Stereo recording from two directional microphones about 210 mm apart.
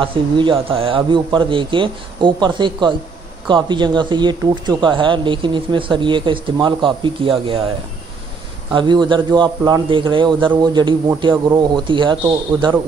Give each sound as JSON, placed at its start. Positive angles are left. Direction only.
{"t": 0.0, "sound": "speech", "side_deg": -25}
{"t": 8.7, "sound": "speech", "side_deg": -20}